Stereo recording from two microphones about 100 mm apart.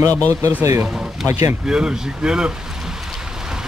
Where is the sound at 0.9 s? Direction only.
5° right (ahead or behind).